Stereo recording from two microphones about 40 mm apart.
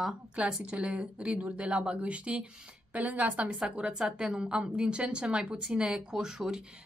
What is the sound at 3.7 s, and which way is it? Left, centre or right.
A woman's voice, centre.